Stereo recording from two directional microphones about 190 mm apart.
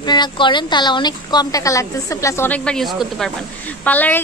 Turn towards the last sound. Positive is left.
turn(degrees=10)  # may be behind; listen again after turning